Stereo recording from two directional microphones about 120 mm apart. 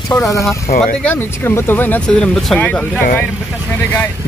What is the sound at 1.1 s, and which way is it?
Speech, 15° left (ahead or behind).